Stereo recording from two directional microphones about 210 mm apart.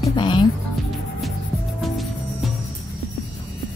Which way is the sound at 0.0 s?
20° left (ahead or behind).